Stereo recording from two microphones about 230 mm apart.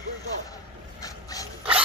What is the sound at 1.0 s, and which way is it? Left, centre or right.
Dog, centre.